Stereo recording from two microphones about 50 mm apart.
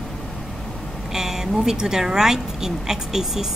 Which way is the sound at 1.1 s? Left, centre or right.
Centre.